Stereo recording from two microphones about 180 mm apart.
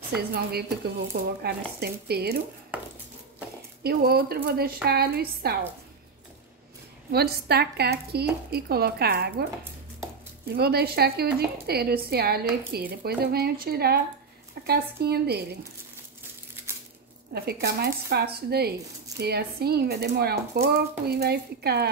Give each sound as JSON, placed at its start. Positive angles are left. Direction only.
{"t": 0.3, "sound": "speech", "side_deg": -60}
{"t": 3.8, "sound": "speech", "side_deg": -60}
{"t": 7.1, "sound": "speech", "side_deg": -60}
{"t": 17.3, "sound": "speech", "side_deg": -60}